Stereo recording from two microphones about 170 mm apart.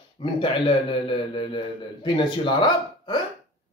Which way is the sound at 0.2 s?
30° left (ahead or behind).